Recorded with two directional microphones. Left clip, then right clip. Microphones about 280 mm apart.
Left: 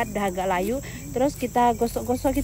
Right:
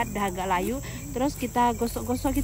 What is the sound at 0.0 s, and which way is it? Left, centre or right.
Speech, centre.